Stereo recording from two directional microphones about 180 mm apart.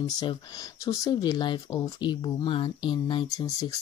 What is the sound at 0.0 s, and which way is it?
Speech, 20° left (ahead or behind).